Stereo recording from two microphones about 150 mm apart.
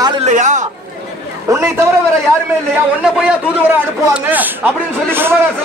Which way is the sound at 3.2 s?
10° right (ahead or behind).